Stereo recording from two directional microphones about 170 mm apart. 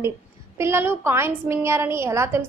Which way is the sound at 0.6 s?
15° right (ahead or behind).